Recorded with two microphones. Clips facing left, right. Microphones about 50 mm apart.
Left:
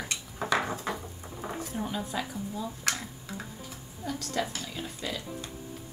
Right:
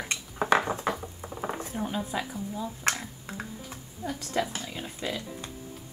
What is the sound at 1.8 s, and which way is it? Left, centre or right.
Speech, centre.